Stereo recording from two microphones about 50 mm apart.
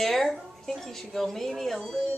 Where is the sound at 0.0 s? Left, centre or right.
Centre.